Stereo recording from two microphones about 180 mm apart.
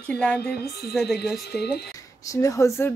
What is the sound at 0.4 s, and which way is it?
Speech, 65° left (ahead or behind).